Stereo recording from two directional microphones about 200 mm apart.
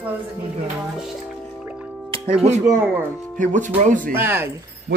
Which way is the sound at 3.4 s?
40° right (ahead or behind).